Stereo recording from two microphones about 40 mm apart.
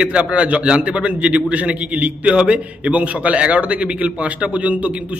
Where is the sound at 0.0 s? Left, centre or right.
Right.